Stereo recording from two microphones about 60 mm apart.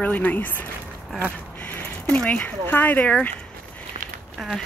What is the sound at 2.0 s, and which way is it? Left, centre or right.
Speech, left.